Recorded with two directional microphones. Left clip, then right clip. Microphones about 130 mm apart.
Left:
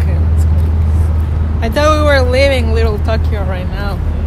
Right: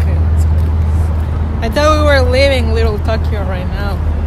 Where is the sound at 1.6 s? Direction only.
15° right (ahead or behind).